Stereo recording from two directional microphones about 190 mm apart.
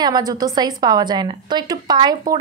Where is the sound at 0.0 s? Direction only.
20° right (ahead or behind).